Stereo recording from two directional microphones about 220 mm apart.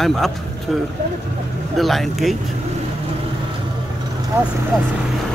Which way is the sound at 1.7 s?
Centre (ahead or behind).